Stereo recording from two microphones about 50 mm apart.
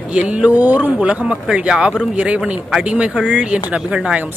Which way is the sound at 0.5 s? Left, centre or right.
Right.